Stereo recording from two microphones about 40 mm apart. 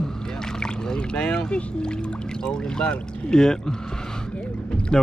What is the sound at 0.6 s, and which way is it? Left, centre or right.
Speech, centre.